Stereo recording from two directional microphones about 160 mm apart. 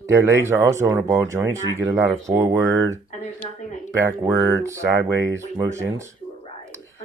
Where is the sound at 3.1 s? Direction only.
50° left (ahead or behind).